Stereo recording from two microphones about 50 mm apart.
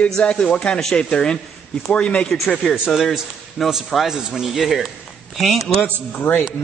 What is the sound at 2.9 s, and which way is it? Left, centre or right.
A man's voice, centre.